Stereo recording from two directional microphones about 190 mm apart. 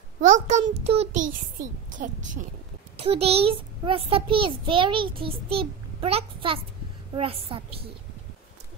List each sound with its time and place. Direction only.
0.2 s a child's voice: 40° right (ahead or behind)
3.0 s a child's voice: 30° right (ahead or behind)